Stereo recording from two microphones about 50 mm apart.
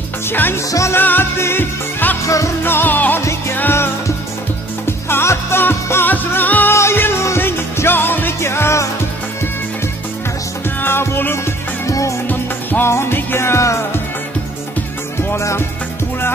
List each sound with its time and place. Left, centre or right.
0.3 s music: left
2.2 s music: left
2.6 s music: left
3.2 s music: left
4.8 s music: left
6.1 s music: left
6.7 s music: left
8.4 s music: left
10.8 s music: left
11.8 s music: left
12.8 s music: left
15.3 s music: left